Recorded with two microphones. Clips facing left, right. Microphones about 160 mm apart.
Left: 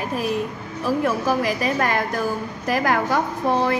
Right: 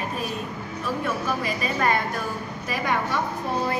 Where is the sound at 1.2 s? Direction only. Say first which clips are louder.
Left 6 dB; 90° left.